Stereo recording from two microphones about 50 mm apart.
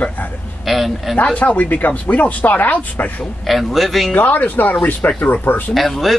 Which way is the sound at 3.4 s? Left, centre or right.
Centre.